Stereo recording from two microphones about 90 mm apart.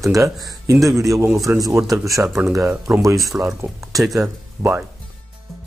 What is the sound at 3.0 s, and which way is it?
Speech, 40° right (ahead or behind).